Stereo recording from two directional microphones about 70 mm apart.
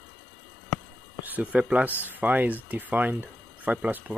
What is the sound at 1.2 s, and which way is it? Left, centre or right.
Speech, right.